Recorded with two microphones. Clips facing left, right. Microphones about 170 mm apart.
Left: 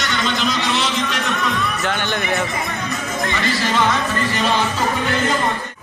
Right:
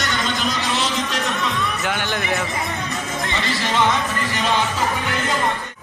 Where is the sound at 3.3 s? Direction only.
25° right (ahead or behind).